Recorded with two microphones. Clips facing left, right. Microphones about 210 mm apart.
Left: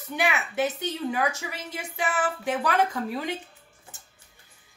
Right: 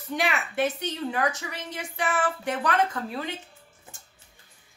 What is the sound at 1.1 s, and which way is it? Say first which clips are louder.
Speech: even; 10° left (ahead or behind).